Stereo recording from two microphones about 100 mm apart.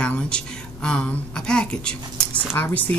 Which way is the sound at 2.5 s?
20° left (ahead or behind).